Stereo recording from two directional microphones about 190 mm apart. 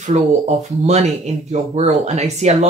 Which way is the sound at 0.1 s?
35° right (ahead or behind).